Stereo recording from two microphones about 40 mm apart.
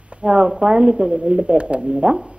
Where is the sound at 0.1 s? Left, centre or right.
Right.